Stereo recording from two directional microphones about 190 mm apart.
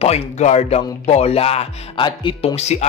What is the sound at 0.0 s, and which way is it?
Speech, 35° left (ahead or behind).